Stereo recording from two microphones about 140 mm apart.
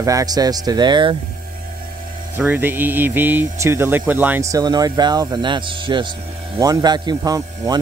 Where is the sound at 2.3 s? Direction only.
15° right (ahead or behind).